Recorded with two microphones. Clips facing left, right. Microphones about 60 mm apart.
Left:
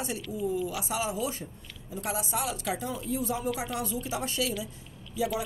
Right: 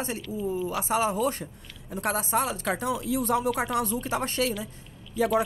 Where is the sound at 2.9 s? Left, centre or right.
Right.